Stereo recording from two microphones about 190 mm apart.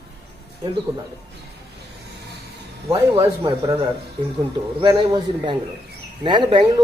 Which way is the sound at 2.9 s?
25° right (ahead or behind).